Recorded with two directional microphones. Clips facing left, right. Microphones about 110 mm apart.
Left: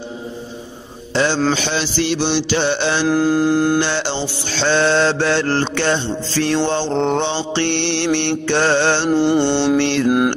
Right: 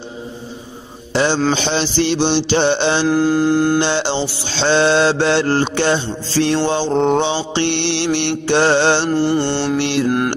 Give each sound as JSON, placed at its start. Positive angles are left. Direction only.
{"t": 1.1, "sound": "a man's voice", "side_deg": -15}
{"t": 1.5, "sound": "mantra", "side_deg": -25}
{"t": 3.1, "sound": "mantra", "side_deg": 0}
{"t": 3.8, "sound": "mantra", "side_deg": -20}
{"t": 6.3, "sound": "mantra", "side_deg": -20}
{"t": 6.6, "sound": "mantra", "side_deg": -10}
{"t": 9.1, "sound": "mantra", "side_deg": 20}
{"t": 9.8, "sound": "mantra", "side_deg": -10}
{"t": 10.0, "sound": "mantra", "side_deg": 10}